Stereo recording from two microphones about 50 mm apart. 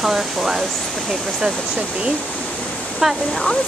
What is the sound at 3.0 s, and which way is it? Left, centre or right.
Speech, centre.